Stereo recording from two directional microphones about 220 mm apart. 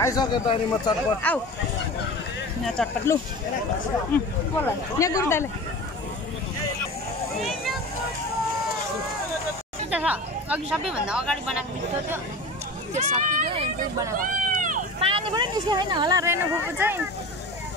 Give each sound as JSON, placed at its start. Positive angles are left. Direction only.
{"t": 0.0, "sound": "speech", "side_deg": 15}
{"t": 1.2, "sound": "speech", "side_deg": 10}
{"t": 3.1, "sound": "speech", "side_deg": 10}
{"t": 7.3, "sound": "vehicle", "side_deg": 0}
{"t": 9.8, "sound": "speech", "side_deg": -5}
{"t": 12.9, "sound": "speech", "side_deg": -30}
{"t": 14.1, "sound": "run", "side_deg": -40}
{"t": 15.0, "sound": "speech", "side_deg": -25}